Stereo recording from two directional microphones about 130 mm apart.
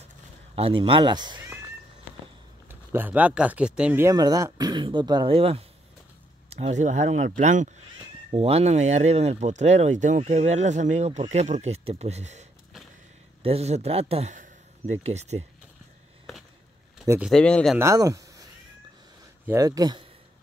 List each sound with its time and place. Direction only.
0.6 s speech: 45° right (ahead or behind)
2.7 s speech: 15° right (ahead or behind)
4.0 s speech: 30° right (ahead or behind)
5.3 s a man's voice: 50° right (ahead or behind); by 7.7 s 70° right (ahead or behind)
8.3 s a man's voice: 50° right (ahead or behind)
14.3 s a sound: 75° right (ahead or behind)
15.0 s speech: 55° right (ahead or behind)
17.3 s speech: 10° left (ahead or behind)
17.7 s speech: 25° right (ahead or behind)
19.4 s speech: 25° right (ahead or behind)